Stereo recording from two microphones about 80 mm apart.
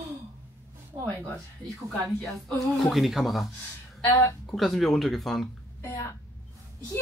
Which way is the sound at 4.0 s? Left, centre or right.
Left.